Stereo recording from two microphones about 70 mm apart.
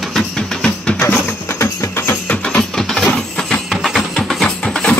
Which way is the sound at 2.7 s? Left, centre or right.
Centre.